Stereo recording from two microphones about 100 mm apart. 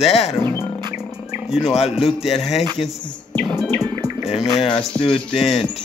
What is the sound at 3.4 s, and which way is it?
Speech, centre (ahead or behind).